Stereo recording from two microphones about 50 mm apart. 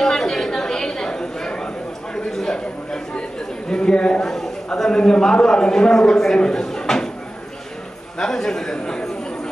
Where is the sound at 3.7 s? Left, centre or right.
Centre.